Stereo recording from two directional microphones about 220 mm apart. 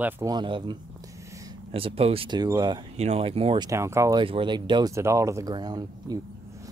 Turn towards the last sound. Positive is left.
turn(degrees=-15)  # may be behind; listen again after turning